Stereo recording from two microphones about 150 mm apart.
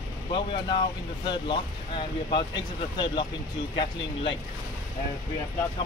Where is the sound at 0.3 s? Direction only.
30° left (ahead or behind).